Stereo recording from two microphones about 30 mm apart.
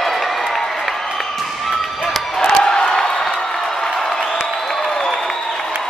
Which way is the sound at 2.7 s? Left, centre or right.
Left.